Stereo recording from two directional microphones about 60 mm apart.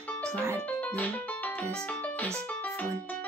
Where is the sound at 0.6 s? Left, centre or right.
Left.